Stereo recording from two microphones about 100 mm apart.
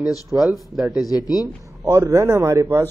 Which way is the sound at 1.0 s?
35° left (ahead or behind).